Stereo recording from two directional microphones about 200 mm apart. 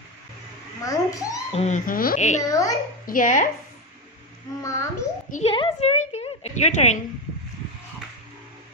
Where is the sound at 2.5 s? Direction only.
15° left (ahead or behind).